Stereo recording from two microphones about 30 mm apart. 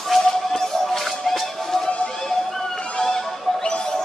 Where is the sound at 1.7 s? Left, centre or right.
Left.